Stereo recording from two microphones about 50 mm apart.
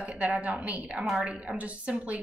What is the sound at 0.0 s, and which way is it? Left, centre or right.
A woman's voice, right.